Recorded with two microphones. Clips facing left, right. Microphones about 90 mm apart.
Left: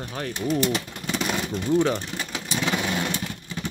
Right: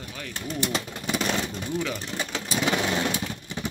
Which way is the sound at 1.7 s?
35° left (ahead or behind).